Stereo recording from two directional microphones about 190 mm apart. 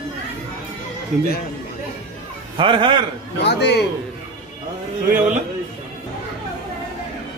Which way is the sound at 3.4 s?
60° left (ahead or behind).